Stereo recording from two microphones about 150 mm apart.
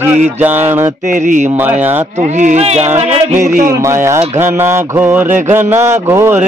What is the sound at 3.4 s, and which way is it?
Speech, 65° right (ahead or behind).